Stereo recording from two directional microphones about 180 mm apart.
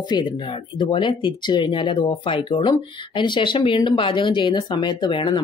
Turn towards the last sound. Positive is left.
turn(degrees=25)  # may be behind; listen again after turning